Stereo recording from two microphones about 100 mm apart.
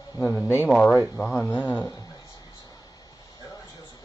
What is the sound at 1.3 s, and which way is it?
Speech, 20° left (ahead or behind).